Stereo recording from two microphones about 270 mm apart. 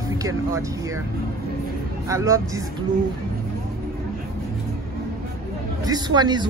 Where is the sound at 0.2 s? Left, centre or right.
Centre.